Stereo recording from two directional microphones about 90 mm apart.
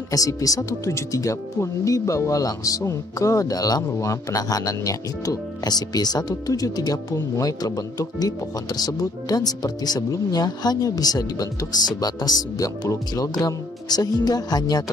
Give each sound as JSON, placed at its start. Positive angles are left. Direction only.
{"t": 0.1, "sound": "speech", "side_deg": 40}